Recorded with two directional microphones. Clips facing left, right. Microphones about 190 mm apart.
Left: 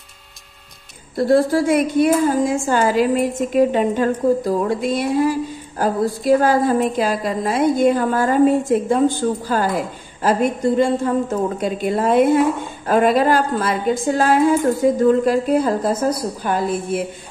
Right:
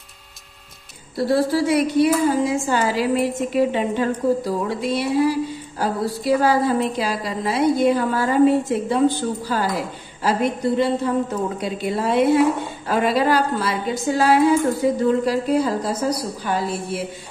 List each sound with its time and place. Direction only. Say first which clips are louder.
1.1 s a woman's voice: left 4 dB; 50° left (ahead or behind)